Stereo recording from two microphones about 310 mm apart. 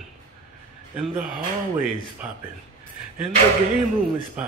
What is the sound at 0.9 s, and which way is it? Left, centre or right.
Speech, centre.